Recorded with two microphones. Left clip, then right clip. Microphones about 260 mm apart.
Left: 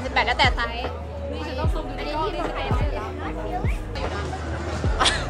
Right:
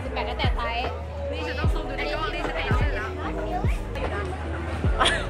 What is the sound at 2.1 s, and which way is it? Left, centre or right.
Music, centre.